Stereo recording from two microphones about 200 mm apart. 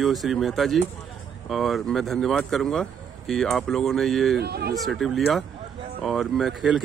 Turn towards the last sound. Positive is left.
turn(degrees=0)  # may be behind; listen again after turning